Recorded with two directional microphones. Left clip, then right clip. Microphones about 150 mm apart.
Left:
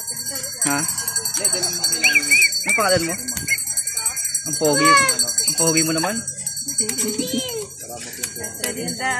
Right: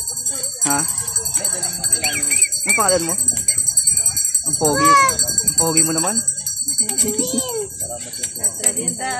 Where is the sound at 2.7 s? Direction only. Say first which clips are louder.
Right 1 dB; 20° right (ahead or behind).